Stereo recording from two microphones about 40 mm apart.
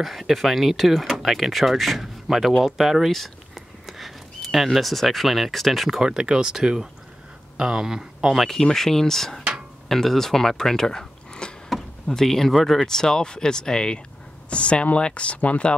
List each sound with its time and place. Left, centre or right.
0.0 s speech: centre
5.9 s speech: centre
8.4 s speech: centre
11.4 s a sound: left
12.1 s speech: centre; by 15.7 s left